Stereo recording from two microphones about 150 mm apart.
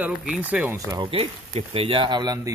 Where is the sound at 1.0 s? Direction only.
40° right (ahead or behind).